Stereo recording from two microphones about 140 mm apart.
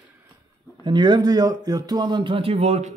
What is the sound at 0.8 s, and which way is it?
A man's voice, 35° right (ahead or behind).